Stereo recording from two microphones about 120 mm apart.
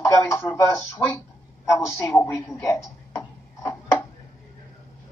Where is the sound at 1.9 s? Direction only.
20° left (ahead or behind).